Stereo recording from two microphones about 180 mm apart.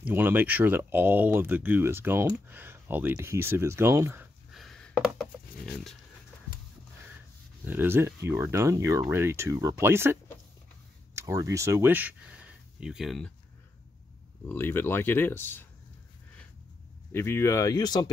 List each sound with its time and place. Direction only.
0.0 s speech: 10° right (ahead or behind)
4.5 s a sound: centre (ahead or behind)
7.6 s speech: 10° right (ahead or behind)
11.1 s speech: 15° right (ahead or behind); by 13.3 s centre (ahead or behind)
14.4 s speech: 10° left (ahead or behind)
17.1 s speech: 15° left (ahead or behind)